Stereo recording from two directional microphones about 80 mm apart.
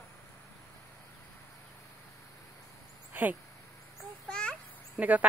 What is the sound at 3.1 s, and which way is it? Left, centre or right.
Speech, right.